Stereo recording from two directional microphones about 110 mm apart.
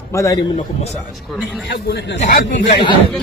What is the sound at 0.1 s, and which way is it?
Speech, 30° left (ahead or behind).